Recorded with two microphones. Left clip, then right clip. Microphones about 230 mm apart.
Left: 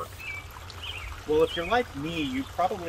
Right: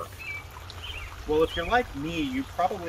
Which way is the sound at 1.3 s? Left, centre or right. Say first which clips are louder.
Even; centre.